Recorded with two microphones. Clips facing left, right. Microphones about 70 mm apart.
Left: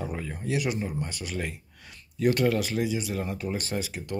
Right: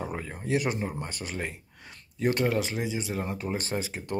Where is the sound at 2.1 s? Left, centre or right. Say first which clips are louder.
Left 2 dB; right.